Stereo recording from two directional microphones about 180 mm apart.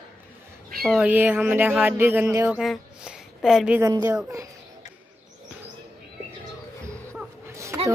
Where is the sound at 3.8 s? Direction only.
20° right (ahead or behind).